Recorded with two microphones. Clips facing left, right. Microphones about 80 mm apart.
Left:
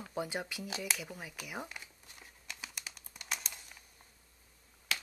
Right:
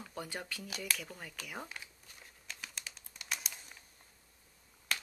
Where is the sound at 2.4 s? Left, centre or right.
Centre.